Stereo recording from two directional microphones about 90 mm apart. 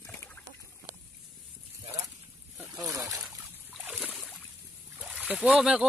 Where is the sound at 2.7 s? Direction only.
35° right (ahead or behind).